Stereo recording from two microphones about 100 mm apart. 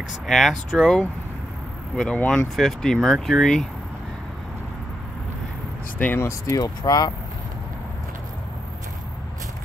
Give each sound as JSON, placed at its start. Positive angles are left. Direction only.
{"t": 0.3, "sound": "speech", "side_deg": 0}
{"t": 2.1, "sound": "speech", "side_deg": 5}
{"t": 5.9, "sound": "speech", "side_deg": 15}
{"t": 6.2, "sound": "speech", "side_deg": 35}